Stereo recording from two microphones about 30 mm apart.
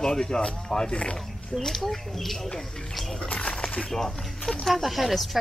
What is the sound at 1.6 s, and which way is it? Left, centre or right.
Speech, centre.